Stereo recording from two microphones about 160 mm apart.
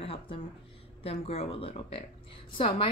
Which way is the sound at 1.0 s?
40° left (ahead or behind).